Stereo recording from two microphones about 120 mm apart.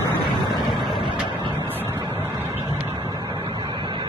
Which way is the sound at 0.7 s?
Centre (ahead or behind).